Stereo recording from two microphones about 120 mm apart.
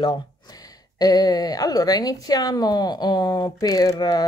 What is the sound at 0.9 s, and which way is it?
Speech, 35° left (ahead or behind).